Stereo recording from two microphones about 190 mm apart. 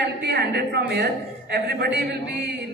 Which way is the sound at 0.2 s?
60° right (ahead or behind).